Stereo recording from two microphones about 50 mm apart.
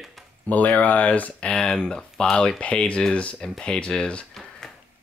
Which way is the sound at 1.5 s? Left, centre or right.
Centre.